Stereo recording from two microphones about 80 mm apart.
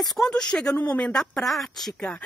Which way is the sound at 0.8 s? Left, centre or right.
Centre.